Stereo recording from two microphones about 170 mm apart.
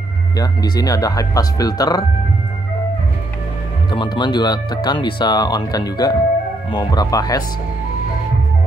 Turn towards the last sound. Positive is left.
turn(degrees=20)  # may be behind; listen again after turning